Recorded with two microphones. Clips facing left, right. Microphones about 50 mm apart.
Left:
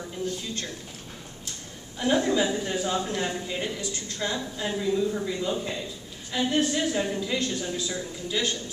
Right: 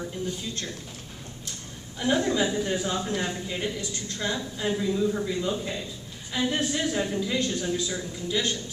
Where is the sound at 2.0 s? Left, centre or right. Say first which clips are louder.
Left 1 dB; centre.